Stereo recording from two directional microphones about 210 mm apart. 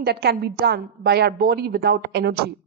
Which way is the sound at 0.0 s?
50° right (ahead or behind).